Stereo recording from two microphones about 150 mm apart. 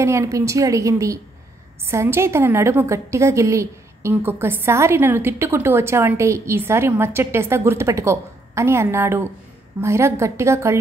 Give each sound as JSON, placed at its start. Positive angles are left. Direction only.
{"t": 0.0, "sound": "a woman's voice", "side_deg": -20}